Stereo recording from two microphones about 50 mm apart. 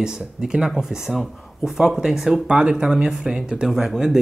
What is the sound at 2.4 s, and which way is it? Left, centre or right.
Speech, centre.